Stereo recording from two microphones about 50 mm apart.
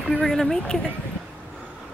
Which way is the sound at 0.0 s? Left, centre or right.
Centre.